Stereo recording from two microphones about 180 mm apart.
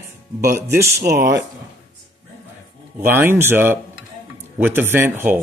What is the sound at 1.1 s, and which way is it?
Speech, 55° right (ahead or behind).